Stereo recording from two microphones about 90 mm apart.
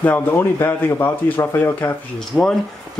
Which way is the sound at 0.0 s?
25° left (ahead or behind).